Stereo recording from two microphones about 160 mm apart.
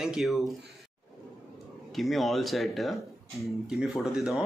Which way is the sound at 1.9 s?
Centre (ahead or behind).